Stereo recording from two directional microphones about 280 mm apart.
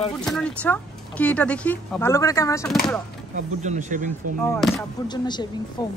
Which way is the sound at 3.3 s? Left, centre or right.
Right.